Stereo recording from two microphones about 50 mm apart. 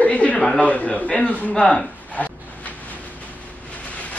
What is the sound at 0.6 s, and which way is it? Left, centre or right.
Speech, left.